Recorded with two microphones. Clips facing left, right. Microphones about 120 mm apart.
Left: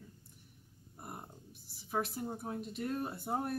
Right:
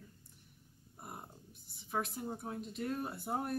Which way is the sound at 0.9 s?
Centre (ahead or behind).